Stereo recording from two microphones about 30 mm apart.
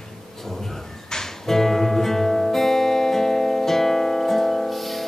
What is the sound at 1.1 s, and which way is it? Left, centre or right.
Music, centre.